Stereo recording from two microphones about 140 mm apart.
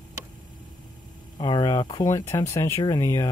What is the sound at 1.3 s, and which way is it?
Speech, 35° left (ahead or behind).